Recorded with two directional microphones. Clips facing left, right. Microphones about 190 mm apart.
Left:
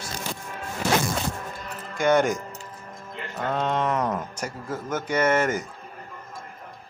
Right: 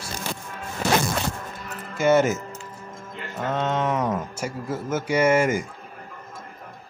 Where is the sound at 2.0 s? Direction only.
5° right (ahead or behind).